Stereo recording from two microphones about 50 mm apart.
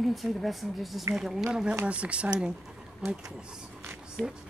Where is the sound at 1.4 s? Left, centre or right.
Centre.